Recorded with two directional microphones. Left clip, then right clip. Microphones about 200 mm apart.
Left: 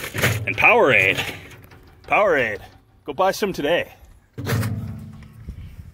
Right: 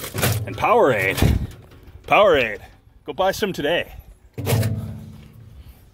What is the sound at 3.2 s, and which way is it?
Speech, 10° right (ahead or behind).